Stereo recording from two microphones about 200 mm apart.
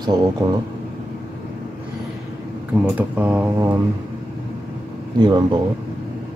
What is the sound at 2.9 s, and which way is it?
Speech, 5° right (ahead or behind).